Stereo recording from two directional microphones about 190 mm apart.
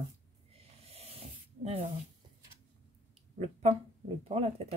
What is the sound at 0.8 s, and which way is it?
Snake, 30° right (ahead or behind).